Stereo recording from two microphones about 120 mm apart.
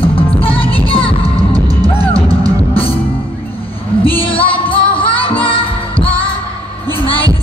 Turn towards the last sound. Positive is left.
turn(degrees=45)  # may be behind; listen again after turning